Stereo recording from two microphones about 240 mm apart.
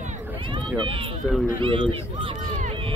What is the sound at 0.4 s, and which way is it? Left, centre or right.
Run, right.